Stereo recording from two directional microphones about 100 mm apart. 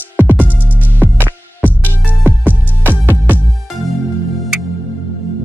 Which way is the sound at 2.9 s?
15° right (ahead or behind).